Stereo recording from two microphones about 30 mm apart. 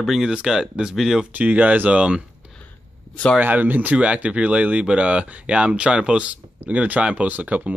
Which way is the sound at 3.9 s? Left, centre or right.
Right.